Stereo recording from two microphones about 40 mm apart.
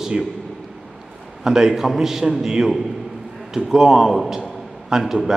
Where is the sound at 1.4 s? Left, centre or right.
Centre.